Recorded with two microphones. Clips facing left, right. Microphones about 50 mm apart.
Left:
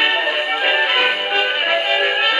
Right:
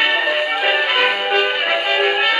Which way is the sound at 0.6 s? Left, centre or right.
Centre.